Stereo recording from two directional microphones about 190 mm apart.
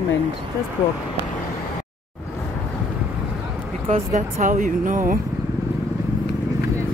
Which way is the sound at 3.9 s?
35° right (ahead or behind).